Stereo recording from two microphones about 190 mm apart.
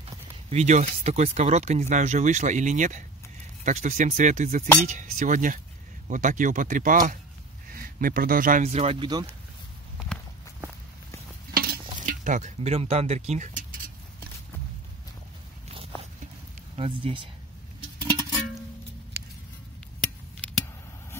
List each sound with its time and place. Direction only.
0.5 s speech: 35° right (ahead or behind)
11.5 s cutlery: 50° right (ahead or behind)
16.7 s speech: 30° right (ahead or behind)